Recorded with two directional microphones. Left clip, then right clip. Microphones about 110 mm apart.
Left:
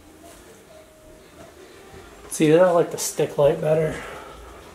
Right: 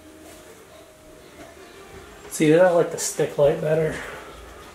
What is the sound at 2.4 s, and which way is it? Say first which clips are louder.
Speech: even; 20° left (ahead or behind).